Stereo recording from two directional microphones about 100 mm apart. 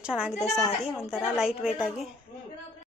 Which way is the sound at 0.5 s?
Centre (ahead or behind).